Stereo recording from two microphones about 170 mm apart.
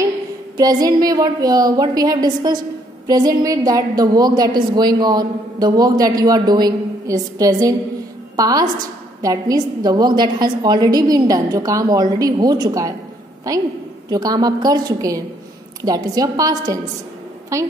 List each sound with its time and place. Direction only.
0.6 s a woman's voice: 20° right (ahead or behind)
14.1 s a woman's voice: 20° right (ahead or behind)